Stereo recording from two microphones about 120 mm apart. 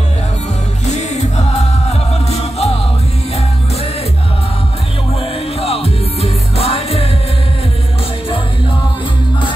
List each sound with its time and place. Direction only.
0.8 s music: 70° left (ahead or behind)
5.6 s music: 55° left (ahead or behind)